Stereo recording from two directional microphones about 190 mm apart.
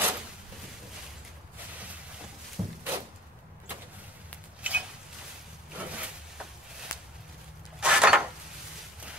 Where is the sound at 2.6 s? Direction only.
20° right (ahead or behind).